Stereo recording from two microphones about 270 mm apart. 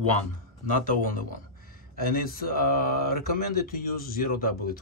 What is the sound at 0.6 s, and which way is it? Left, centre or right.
Speech, left.